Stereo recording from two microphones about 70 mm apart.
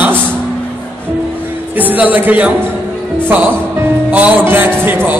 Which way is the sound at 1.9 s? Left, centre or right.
Right.